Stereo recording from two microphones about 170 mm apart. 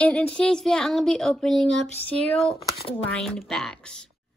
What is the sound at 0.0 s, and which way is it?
A woman's voice, 5° left (ahead or behind).